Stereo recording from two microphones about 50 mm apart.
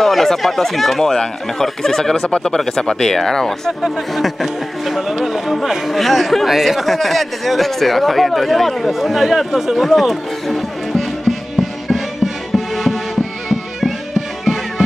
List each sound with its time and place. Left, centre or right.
0.0 s speech: centre
12.5 s music: centre